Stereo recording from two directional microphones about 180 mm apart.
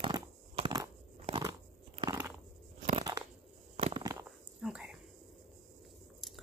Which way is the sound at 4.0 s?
20° right (ahead or behind).